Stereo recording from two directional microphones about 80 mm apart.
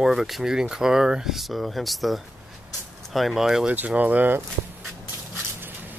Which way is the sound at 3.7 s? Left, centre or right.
Centre.